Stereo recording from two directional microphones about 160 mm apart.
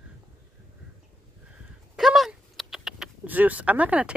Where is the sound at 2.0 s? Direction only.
Centre (ahead or behind).